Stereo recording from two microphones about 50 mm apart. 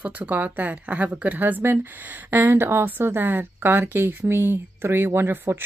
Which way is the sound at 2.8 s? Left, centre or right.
Right.